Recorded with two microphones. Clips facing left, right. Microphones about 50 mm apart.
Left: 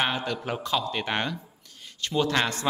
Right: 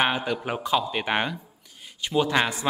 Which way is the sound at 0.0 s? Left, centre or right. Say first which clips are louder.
Right 3 dB; centre.